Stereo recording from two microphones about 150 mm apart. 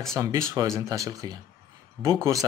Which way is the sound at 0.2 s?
20° right (ahead or behind).